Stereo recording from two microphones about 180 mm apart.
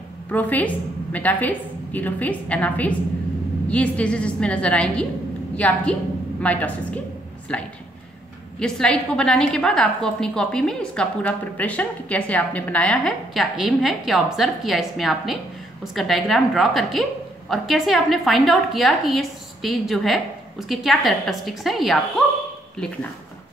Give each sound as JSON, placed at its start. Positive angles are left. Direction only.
{"t": 0.3, "sound": "a woman's voice", "side_deg": 10}
{"t": 6.4, "sound": "a woman's voice", "side_deg": 10}